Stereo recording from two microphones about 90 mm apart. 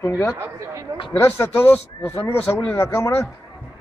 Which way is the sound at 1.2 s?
30° left (ahead or behind).